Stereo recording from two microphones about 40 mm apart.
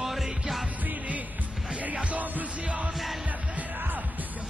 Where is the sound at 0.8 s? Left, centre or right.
Right.